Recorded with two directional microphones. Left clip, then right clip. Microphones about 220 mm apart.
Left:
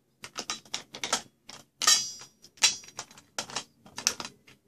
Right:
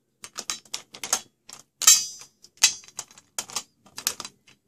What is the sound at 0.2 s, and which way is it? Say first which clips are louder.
Typewriter: right 2 dB; 10° right (ahead or behind).